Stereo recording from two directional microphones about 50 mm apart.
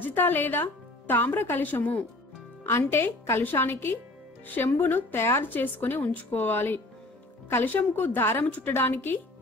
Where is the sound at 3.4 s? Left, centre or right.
Left.